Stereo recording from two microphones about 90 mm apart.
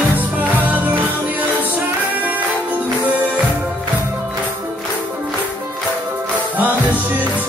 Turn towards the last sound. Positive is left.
turn(degrees=-20)  # may be behind; listen again after turning